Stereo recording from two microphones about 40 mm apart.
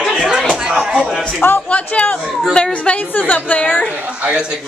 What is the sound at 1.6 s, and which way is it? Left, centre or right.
A woman's voice, left.